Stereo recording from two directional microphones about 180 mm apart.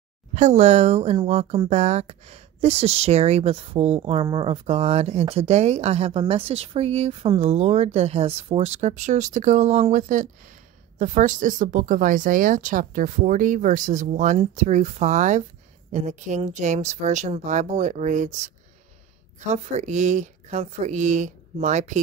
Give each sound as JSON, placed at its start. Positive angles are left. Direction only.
{"t": 0.3, "sound": "speech", "side_deg": -40}
{"t": 19.4, "sound": "speech", "side_deg": -40}